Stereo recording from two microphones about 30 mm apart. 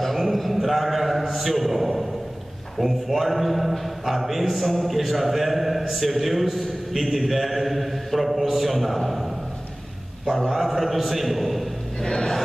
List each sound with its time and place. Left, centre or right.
0.0 s a man's voice: centre
10.5 s a man's voice: centre
12.0 s a sound: left